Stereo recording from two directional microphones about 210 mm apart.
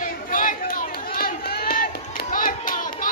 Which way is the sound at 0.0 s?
40° left (ahead or behind).